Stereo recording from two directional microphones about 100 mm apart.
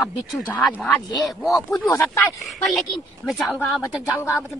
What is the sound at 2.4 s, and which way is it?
A woman's voice, centre (ahead or behind).